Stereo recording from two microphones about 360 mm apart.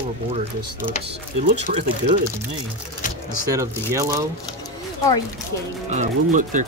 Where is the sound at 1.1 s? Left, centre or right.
Centre.